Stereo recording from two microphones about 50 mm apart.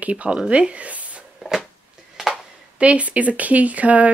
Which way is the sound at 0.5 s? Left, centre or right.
Right.